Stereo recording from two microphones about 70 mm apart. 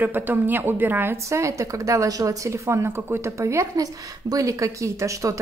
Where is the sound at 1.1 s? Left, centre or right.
Right.